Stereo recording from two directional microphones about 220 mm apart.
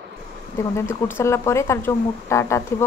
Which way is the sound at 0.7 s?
10° left (ahead or behind).